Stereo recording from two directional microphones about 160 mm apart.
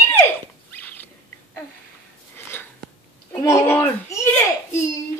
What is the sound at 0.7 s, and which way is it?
Rodents, 10° left (ahead or behind).